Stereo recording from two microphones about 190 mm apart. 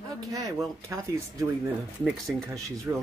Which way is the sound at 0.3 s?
20° right (ahead or behind).